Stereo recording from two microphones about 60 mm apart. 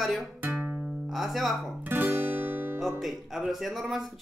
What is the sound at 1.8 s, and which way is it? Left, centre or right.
Guitar, right.